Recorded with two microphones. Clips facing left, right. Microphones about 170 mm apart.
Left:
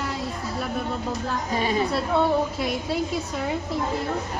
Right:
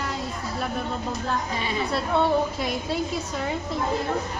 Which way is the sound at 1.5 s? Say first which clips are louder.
Left 5 dB; 40° left (ahead or behind).